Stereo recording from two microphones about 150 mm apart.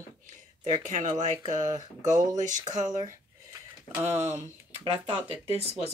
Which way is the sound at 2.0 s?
55° right (ahead or behind).